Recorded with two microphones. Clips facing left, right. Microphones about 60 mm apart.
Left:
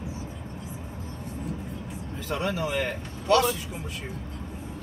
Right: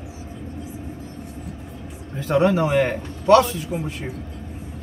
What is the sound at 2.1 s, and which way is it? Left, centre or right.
A man's voice, right.